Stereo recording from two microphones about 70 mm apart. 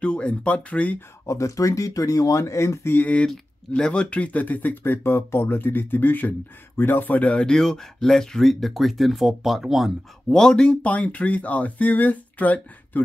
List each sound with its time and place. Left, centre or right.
0.0 s speech: centre
1.2 s speech: left
3.0 s speech: left; by 9.9 s centre
10.3 s speech: centre